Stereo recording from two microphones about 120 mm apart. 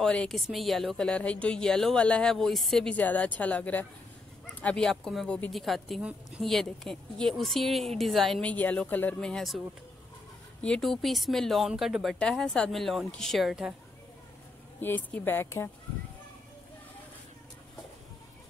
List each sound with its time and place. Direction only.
0.0 s a woman's voice: 5° left (ahead or behind)
10.6 s a woman's voice: 5° left (ahead or behind)
14.8 s speech: 15° left (ahead or behind)